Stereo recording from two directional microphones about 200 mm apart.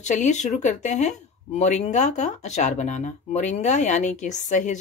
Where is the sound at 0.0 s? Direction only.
35° left (ahead or behind).